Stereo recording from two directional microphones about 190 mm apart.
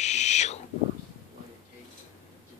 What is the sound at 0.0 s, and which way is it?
Owl, 35° left (ahead or behind).